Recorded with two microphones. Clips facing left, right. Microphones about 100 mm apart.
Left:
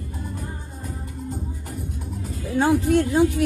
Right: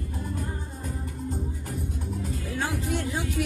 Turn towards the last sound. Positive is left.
turn(degrees=50)  # may be behind; listen again after turning